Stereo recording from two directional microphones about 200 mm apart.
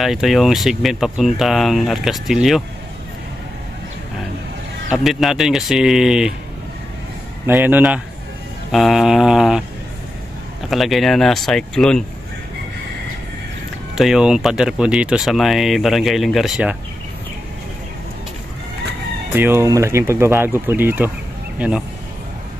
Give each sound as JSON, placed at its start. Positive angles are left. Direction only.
{"t": 0.0, "sound": "speech", "side_deg": 0}
{"t": 4.9, "sound": "speech", "side_deg": 0}
{"t": 7.4, "sound": "speech", "side_deg": -10}
{"t": 8.7, "sound": "a sound", "side_deg": 0}
{"t": 10.7, "sound": "speech", "side_deg": 0}
{"t": 13.9, "sound": "speech", "side_deg": 0}
{"t": 19.3, "sound": "speech", "side_deg": -10}